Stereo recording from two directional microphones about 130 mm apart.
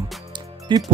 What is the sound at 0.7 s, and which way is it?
Speech, 40° right (ahead or behind).